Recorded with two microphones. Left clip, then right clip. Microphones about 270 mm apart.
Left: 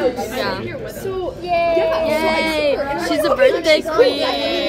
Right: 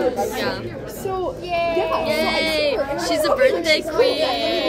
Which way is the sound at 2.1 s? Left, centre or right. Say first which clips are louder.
Left 2 dB; centre.